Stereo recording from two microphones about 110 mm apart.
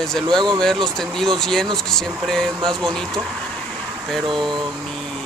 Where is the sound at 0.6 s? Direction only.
5° left (ahead or behind).